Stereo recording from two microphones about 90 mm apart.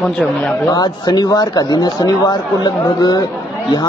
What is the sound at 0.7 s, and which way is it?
A man's voice, 50° left (ahead or behind).